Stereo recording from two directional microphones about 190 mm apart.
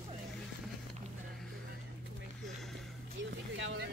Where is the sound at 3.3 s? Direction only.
65° right (ahead or behind).